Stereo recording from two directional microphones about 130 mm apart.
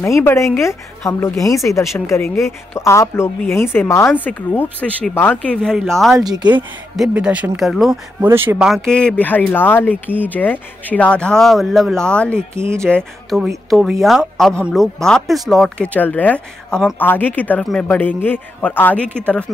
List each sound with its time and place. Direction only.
0.0 s speech: 20° left (ahead or behind); by 6.1 s centre (ahead or behind)
6.1 s speech: 30° right (ahead or behind)
7.0 s speech: 10° right (ahead or behind)
8.2 s speech: 15° right (ahead or behind)
8.5 s speech: centre (ahead or behind)
12.4 s speech: 20° right (ahead or behind)
12.8 s speech: 5° left (ahead or behind)
15.9 s speech: 10° left (ahead or behind)